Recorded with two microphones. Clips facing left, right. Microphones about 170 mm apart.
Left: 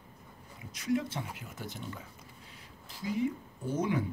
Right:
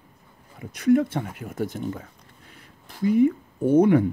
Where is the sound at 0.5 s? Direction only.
60° right (ahead or behind).